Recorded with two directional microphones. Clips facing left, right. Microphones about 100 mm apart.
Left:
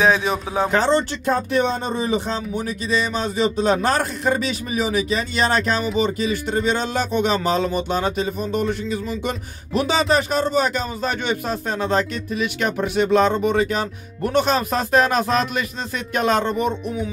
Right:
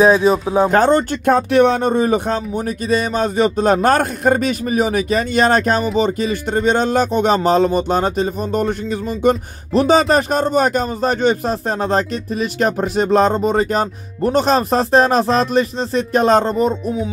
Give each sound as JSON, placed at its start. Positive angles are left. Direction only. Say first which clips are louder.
{"t": 0.0, "sound": "speech", "louder": "right 6 dB", "side_deg": -35}
{"t": 0.7, "sound": "speech", "louder": "right 4 dB", "side_deg": -50}
{"t": 1.3, "sound": "speech", "louder": "right 7 dB", "side_deg": -65}